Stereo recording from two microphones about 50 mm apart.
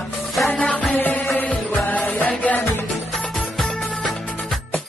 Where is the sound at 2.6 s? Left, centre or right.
Left.